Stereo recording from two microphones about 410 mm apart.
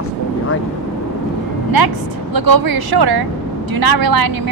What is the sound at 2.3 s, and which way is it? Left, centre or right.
A woman's voice, right.